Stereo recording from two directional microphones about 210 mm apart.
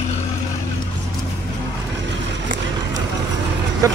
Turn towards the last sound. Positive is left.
turn(degrees=-15)  # may be behind; listen again after turning